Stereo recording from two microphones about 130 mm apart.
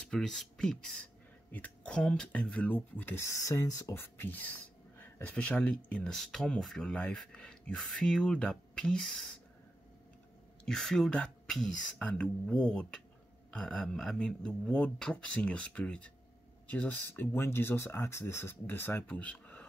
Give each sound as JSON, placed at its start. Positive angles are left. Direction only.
{"t": 0.1, "sound": "speech", "side_deg": 5}
{"t": 10.6, "sound": "speech", "side_deg": 5}